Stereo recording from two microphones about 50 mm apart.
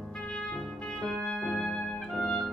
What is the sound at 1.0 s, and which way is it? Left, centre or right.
Music, centre.